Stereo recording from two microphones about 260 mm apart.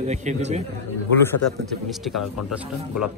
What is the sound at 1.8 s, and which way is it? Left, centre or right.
Speech, centre.